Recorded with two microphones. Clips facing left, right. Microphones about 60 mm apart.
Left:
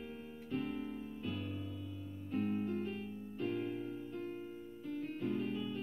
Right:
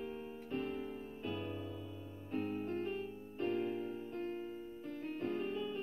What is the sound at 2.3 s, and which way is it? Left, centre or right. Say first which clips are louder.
Music: left 2 dB; right.